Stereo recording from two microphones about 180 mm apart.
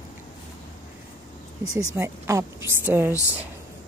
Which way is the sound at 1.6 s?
20° right (ahead or behind).